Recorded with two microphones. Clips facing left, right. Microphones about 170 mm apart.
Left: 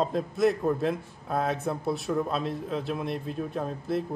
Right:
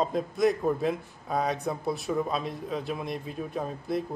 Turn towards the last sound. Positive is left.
turn(degrees=0)  # may be behind; listen again after turning